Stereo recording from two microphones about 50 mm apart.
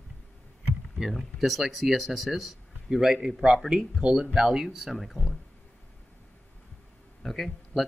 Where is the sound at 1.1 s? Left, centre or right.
Centre.